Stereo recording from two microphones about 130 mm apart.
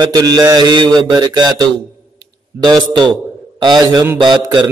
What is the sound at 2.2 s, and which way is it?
Speech, 30° right (ahead or behind).